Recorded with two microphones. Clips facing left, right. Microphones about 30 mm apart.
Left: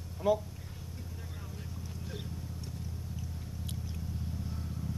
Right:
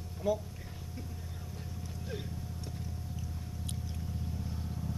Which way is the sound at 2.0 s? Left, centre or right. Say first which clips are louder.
Right 3 dB; centre.